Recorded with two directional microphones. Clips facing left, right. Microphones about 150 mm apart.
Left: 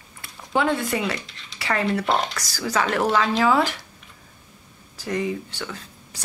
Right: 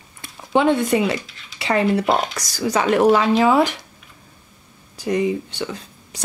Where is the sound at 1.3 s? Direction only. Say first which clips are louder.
Even; centre (ahead or behind).